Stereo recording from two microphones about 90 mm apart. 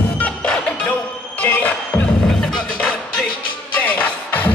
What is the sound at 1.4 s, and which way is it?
Music, 20° left (ahead or behind).